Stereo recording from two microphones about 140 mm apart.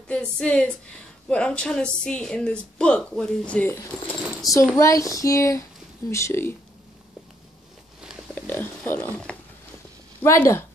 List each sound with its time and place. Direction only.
0.1 s a woman's voice: 5° left (ahead or behind)
8.4 s speech: 15° left (ahead or behind)